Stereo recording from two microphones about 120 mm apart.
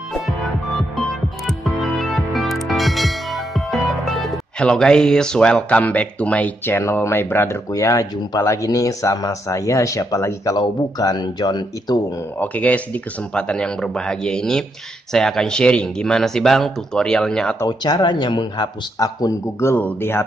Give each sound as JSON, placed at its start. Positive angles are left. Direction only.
{"t": 1.6, "sound": "music", "side_deg": 0}
{"t": 10.6, "sound": "speech", "side_deg": 35}
{"t": 12.4, "sound": "speech", "side_deg": 10}
{"t": 17.6, "sound": "speech", "side_deg": 35}